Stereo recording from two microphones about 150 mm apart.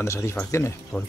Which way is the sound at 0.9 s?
5° left (ahead or behind).